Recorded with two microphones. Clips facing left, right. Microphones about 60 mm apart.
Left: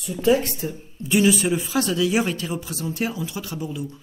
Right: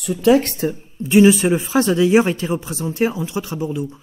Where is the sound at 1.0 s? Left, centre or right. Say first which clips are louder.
Right 7 dB; right.